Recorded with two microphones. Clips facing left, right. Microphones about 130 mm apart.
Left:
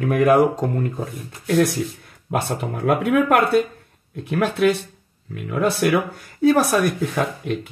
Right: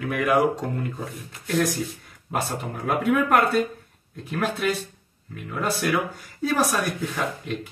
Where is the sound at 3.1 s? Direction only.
65° left (ahead or behind).